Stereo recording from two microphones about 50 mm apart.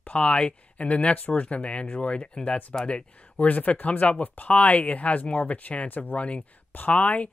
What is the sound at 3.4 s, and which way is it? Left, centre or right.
Speech, left.